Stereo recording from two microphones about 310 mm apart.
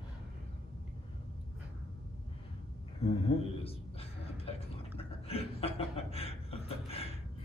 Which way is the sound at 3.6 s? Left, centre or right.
Centre.